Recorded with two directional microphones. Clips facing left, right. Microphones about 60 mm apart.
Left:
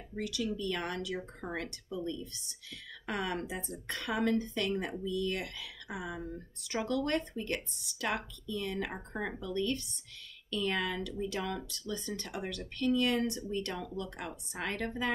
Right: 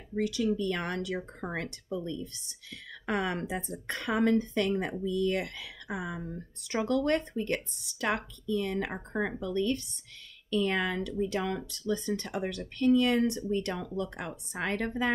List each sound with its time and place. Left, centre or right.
0.2 s a woman's voice: right
3.1 s a woman's voice: right